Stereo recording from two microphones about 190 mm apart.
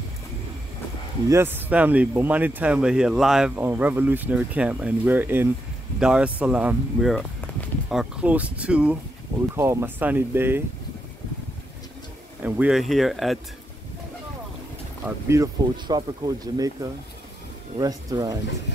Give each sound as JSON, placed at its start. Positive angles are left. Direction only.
{"t": 1.3, "sound": "speech", "side_deg": -10}
{"t": 12.4, "sound": "speech", "side_deg": -5}
{"t": 15.2, "sound": "speech", "side_deg": -15}